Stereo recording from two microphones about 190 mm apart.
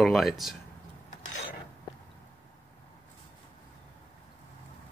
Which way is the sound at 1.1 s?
40° left (ahead or behind).